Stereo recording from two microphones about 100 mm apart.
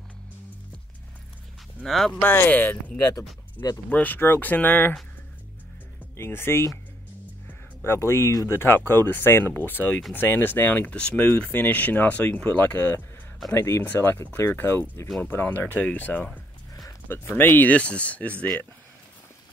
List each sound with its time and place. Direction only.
1.9 s speech: 5° left (ahead or behind)
2.2 s speech: 15° left (ahead or behind)
3.9 s speech: 15° left (ahead or behind)
6.1 s speech: 25° left (ahead or behind)
15.0 s speech: 10° left (ahead or behind)
17.4 s speech: 20° left (ahead or behind)